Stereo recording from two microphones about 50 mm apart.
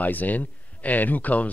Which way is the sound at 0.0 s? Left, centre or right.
Left.